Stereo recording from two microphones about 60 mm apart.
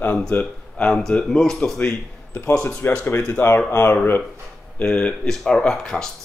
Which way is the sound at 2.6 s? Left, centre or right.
Left.